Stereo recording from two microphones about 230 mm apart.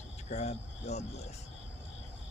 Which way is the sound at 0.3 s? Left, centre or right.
Left.